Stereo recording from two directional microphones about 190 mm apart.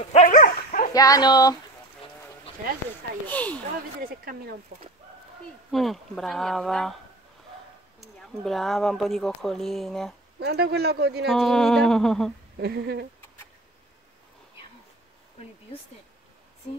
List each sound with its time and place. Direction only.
0.1 s dog: 40° left (ahead or behind)
0.9 s speech: 20° left (ahead or behind)
3.3 s speech: 10° left (ahead or behind)
4.0 s speech: 55° right (ahead or behind)
5.7 s speech: centre (ahead or behind)
8.0 s speech: centre (ahead or behind)
10.4 s speech: 60° right (ahead or behind)
11.2 s speech: centre (ahead or behind)
12.5 s speech: 60° right (ahead or behind)